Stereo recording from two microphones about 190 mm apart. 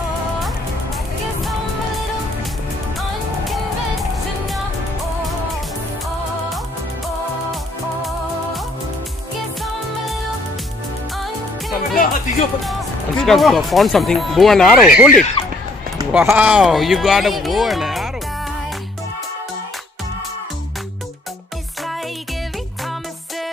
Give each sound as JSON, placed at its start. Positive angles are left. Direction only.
{"t": 11.9, "sound": "music", "side_deg": 45}
{"t": 13.2, "sound": "speech", "side_deg": 0}